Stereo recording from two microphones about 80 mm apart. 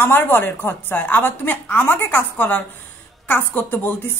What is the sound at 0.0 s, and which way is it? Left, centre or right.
A woman's voice, left.